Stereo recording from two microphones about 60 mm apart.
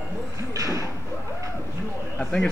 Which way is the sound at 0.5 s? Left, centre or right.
Right.